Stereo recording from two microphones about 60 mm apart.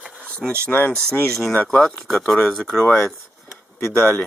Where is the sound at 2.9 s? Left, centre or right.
Centre.